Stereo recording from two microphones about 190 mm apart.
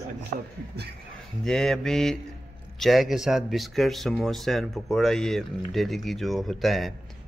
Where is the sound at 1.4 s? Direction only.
Centre (ahead or behind).